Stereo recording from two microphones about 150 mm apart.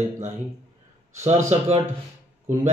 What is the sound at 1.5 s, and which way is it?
Speech, 45° right (ahead or behind).